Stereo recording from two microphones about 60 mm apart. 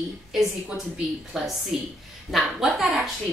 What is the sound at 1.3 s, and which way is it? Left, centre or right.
A woman's voice, centre.